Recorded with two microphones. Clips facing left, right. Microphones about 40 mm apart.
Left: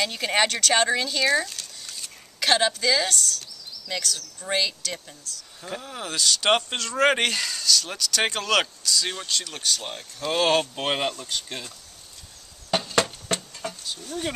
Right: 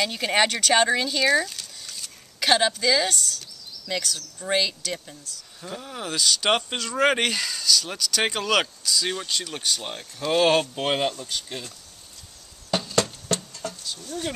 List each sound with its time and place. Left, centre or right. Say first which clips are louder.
0.0 s speech: right 1 dB; centre
12.7 s a sound: left 1 dB; left
13.8 s speech: left 1 dB; centre